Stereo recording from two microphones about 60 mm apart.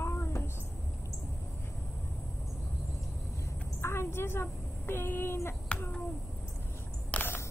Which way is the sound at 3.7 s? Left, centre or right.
Left.